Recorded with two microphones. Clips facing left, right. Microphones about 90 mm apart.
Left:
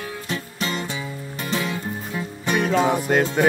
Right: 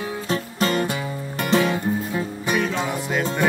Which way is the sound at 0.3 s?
45° right (ahead or behind).